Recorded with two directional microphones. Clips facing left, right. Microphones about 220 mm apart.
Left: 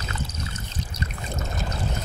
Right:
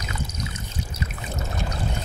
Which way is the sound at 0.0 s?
10° right (ahead or behind).